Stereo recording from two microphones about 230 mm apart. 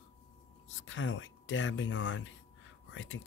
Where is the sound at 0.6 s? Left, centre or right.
Left.